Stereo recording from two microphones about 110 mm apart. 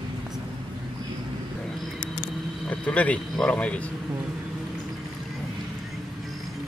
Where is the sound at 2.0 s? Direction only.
40° left (ahead or behind).